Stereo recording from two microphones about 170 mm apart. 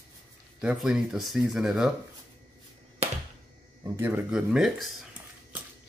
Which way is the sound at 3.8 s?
15° right (ahead or behind).